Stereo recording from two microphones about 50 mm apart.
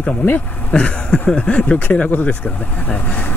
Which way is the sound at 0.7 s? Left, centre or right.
Centre.